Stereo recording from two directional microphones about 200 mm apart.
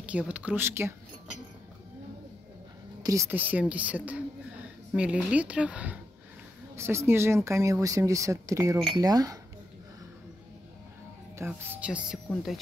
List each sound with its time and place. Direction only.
0.0 s speech: 5° right (ahead or behind)
3.0 s speech: 15° right (ahead or behind)
11.3 s speech: 10° right (ahead or behind)